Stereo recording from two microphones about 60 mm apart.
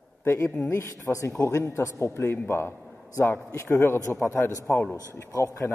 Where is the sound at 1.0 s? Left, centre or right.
Left.